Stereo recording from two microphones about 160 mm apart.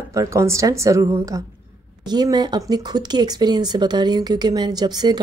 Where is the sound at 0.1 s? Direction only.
20° right (ahead or behind).